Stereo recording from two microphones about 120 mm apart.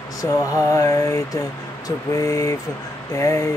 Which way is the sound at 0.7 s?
25° left (ahead or behind).